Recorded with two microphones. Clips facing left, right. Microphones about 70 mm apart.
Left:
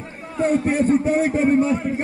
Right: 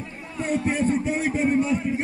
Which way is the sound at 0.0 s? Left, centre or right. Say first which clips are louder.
Left 8 dB; left.